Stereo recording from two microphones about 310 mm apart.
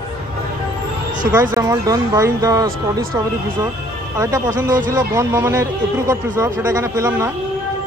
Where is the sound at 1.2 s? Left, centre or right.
Centre.